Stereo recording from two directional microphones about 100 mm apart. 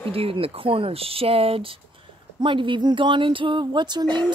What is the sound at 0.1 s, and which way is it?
Speech, 70° right (ahead or behind).